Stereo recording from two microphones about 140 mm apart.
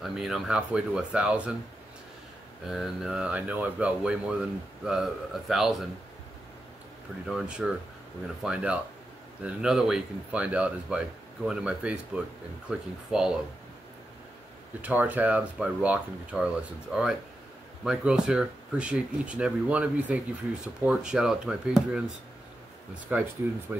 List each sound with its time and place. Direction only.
0.0 s speech: 5° right (ahead or behind)
2.6 s speech: 5° right (ahead or behind)
7.2 s speech: 5° right (ahead or behind)
14.8 s speech: 10° right (ahead or behind)
23.1 s speech: 10° right (ahead or behind)